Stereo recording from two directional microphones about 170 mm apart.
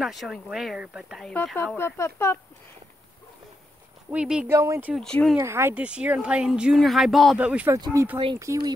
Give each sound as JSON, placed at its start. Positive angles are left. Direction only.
{"t": 0.0, "sound": "speech", "side_deg": 0}
{"t": 4.1, "sound": "speech", "side_deg": -5}
{"t": 4.9, "sound": "speech", "side_deg": 5}
{"t": 5.4, "sound": "speech", "side_deg": -15}